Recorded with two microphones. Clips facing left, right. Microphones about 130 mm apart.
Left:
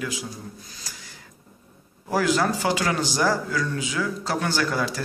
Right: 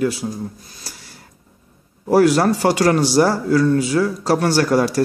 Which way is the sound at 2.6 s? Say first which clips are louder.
Right 8 dB; 40° right (ahead or behind).